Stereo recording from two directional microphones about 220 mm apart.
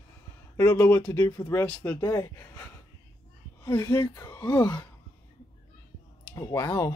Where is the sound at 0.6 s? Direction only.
10° left (ahead or behind).